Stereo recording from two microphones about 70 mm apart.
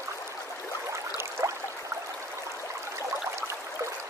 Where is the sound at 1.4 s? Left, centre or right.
Right.